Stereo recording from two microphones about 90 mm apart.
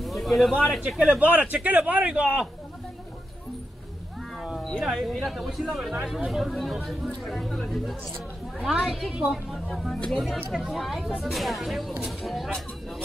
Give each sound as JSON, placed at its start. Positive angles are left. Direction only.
{"t": 0.0, "sound": "speech", "side_deg": 0}
{"t": 0.8, "sound": "speech", "side_deg": -15}
{"t": 4.4, "sound": "cat", "side_deg": 0}
{"t": 4.8, "sound": "speech", "side_deg": 0}
{"t": 8.5, "sound": "speech", "side_deg": -10}
{"t": 10.5, "sound": "speech", "side_deg": 0}